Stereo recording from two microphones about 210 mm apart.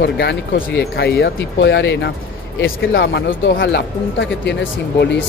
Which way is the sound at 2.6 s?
65° left (ahead or behind).